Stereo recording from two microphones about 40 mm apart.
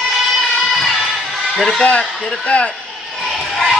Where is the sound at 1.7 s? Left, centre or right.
Left.